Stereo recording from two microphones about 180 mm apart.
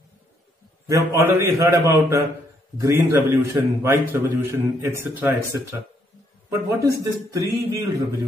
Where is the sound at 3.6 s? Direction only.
15° right (ahead or behind).